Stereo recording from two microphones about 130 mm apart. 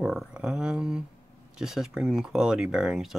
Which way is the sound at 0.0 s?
Centre (ahead or behind).